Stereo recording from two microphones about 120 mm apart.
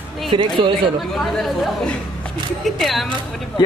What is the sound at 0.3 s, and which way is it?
Speech, 45° right (ahead or behind).